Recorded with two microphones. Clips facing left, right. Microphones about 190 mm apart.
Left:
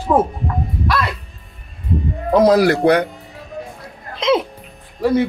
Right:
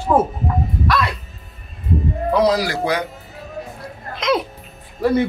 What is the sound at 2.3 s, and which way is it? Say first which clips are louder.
Speech: left 6 dB; 55° left (ahead or behind).